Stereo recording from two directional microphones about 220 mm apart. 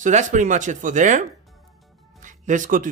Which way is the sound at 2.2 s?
35° right (ahead or behind).